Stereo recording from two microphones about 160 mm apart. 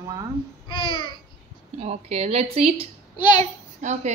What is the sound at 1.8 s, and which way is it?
Speech, 40° right (ahead or behind).